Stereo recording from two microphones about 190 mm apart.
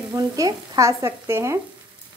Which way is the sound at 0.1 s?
20° right (ahead or behind).